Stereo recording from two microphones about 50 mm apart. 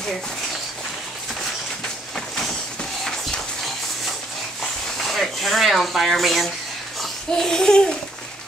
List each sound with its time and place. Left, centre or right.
2.1 s a sound: centre
5.0 s speech: centre
7.0 s babbling: centre